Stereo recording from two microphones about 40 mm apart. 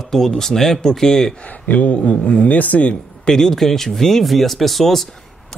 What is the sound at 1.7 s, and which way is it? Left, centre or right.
Speech, left.